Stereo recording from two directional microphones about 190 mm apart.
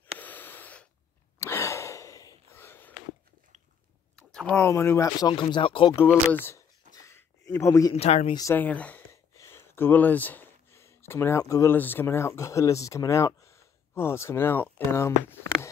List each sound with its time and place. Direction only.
0.2 s a sound: 10° left (ahead or behind)
1.4 s gasp: 15° left (ahead or behind)
4.2 s speech: 5° left (ahead or behind); by 5.9 s 25° left (ahead or behind)
5.9 s speech: 10° left (ahead or behind)
6.9 s a sound: 15° left (ahead or behind)
7.9 s speech: 35° left (ahead or behind)
8.4 s speech: 10° left (ahead or behind)